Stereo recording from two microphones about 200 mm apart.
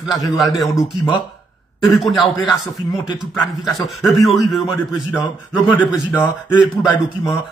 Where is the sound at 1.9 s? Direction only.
Centre (ahead or behind).